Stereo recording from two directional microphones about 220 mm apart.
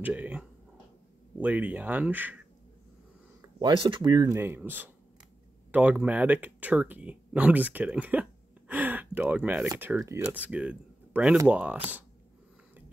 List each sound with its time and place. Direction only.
0.0 s a sound: 5° right (ahead or behind)
1.4 s speech: 5° right (ahead or behind)
3.6 s speech: 25° right (ahead or behind); by 11.8 s 5° right (ahead or behind)